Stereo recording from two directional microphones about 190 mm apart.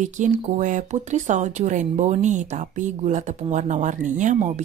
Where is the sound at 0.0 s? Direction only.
40° right (ahead or behind).